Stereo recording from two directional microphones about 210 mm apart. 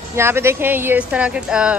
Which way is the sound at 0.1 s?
10° right (ahead or behind).